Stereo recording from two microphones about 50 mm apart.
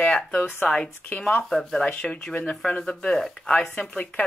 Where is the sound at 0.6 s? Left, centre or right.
Centre.